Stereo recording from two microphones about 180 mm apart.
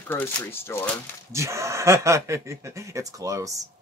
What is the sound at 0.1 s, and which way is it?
Speech, 10° left (ahead or behind).